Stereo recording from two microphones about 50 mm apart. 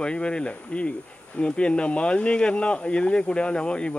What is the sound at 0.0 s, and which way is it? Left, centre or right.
Speech, centre.